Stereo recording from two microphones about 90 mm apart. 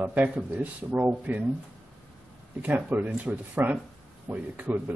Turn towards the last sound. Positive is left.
turn(degrees=-20)  # may be behind; listen again after turning